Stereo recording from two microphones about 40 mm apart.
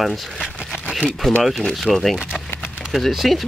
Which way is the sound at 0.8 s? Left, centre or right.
Right.